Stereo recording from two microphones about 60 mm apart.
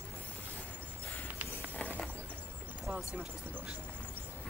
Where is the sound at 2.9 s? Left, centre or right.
Right.